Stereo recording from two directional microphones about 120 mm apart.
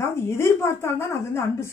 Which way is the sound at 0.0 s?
20° left (ahead or behind).